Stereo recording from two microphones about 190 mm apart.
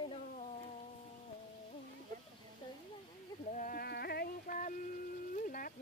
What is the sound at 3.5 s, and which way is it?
Music, 45° left (ahead or behind).